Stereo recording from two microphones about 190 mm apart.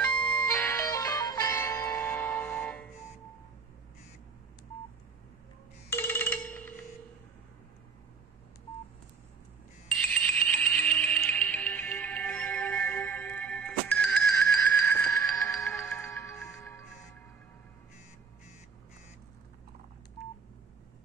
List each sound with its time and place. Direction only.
0.0 s music: 5° left (ahead or behind)
5.9 s ringtone: 10° left (ahead or behind)
10.0 s music: 5° left (ahead or behind)
15.8 s music: 5° left (ahead or behind)